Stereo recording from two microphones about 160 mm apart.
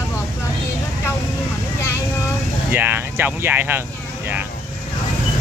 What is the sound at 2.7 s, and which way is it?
Speech, 10° right (ahead or behind).